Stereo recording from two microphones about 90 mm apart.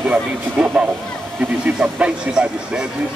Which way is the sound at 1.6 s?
15° right (ahead or behind).